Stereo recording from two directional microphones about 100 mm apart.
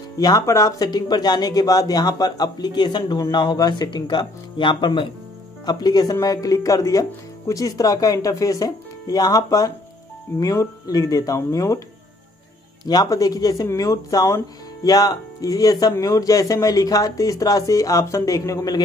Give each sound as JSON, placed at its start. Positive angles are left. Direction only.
{"t": 0.2, "sound": "speech", "side_deg": 40}
{"t": 5.7, "sound": "speech", "side_deg": 40}
{"t": 12.8, "sound": "speech", "side_deg": 40}